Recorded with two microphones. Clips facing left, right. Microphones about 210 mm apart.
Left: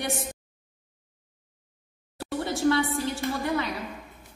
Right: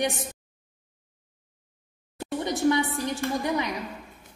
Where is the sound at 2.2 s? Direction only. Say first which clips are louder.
Right 1 dB; 15° right (ahead or behind).